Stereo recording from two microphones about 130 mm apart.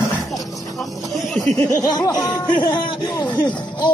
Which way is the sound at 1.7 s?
30° left (ahead or behind).